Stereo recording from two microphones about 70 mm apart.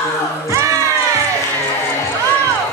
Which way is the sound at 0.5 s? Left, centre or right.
Right.